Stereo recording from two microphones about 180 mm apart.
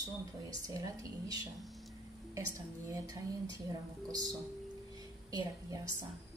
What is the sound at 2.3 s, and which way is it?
A woman's voice, 20° right (ahead or behind).